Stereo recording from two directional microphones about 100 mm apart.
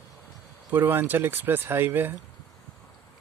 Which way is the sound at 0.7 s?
20° right (ahead or behind).